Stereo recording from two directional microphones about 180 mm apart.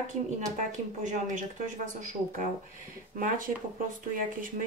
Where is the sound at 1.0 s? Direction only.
45° right (ahead or behind).